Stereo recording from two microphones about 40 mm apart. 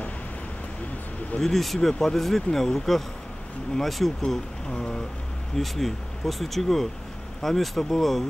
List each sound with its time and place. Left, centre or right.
1.4 s speech: centre
4.6 s speech: centre
5.6 s speech: centre